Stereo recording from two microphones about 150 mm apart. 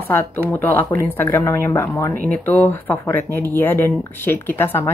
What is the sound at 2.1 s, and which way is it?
Speech, 70° right (ahead or behind).